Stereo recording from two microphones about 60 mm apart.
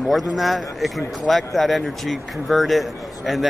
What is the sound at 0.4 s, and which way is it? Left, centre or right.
Speech, centre.